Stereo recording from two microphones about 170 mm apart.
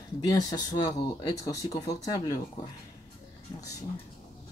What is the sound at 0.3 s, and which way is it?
Speech, 20° left (ahead or behind).